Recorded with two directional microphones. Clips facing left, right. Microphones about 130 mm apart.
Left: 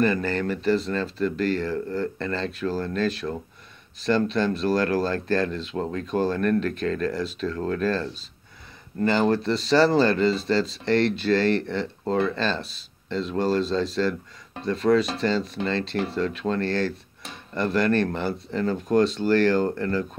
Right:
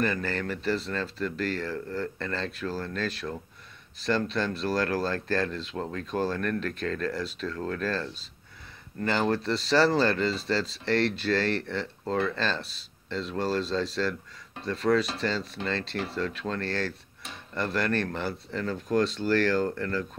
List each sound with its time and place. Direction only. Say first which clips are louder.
0.0 s speech: left 6 dB; 15° left (ahead or behind)
4.1 s speech: left 5 dB; 25° left (ahead or behind)
6.4 s speech: left 7 dB; 15° left (ahead or behind)